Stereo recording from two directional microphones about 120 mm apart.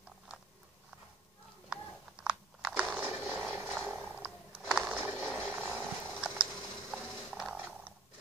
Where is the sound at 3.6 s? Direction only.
5° right (ahead or behind).